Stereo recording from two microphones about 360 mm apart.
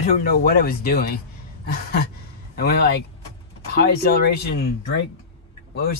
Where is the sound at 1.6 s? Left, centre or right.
Left.